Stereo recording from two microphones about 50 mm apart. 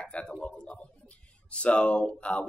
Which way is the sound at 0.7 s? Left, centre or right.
Left.